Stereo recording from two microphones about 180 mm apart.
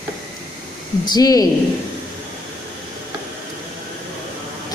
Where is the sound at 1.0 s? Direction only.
20° left (ahead or behind).